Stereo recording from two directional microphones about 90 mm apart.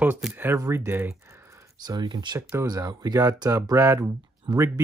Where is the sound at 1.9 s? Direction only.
50° right (ahead or behind).